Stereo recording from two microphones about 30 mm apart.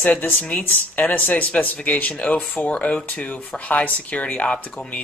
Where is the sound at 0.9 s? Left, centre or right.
Left.